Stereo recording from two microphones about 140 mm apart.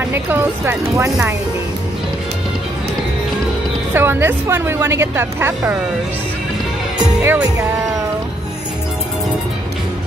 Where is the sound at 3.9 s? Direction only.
15° right (ahead or behind).